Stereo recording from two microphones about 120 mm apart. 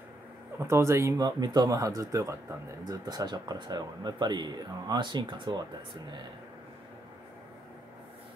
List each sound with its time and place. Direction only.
0.6 s speech: 25° right (ahead or behind); by 5.7 s 40° right (ahead or behind)